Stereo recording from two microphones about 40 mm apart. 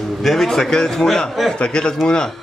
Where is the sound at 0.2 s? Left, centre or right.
Centre; by 2.0 s left.